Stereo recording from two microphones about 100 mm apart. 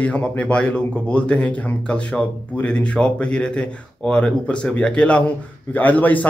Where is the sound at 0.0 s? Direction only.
15° left (ahead or behind).